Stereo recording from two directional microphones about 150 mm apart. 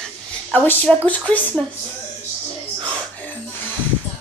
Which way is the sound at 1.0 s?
10° left (ahead or behind).